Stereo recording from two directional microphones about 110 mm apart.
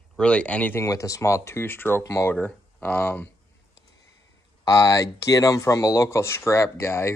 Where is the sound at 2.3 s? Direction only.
15° left (ahead or behind).